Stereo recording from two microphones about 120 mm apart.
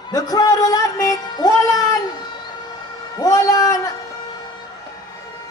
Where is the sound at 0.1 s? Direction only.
30° left (ahead or behind).